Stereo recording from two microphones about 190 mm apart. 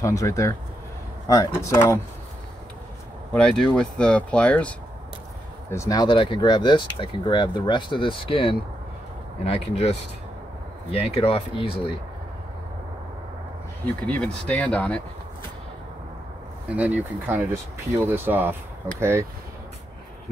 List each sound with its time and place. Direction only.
0.0 s speech: 15° left (ahead or behind)
3.3 s speech: 5° left (ahead or behind)
5.7 s speech: 15° left (ahead or behind)
14.0 s speech: 5° left (ahead or behind)
16.7 s speech: 10° right (ahead or behind)